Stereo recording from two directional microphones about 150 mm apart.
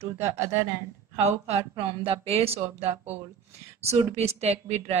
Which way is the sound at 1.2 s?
40° right (ahead or behind).